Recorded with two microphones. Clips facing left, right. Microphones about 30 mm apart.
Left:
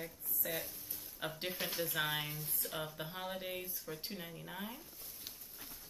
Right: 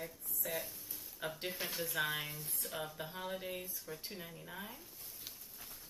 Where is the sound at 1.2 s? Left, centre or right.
Left.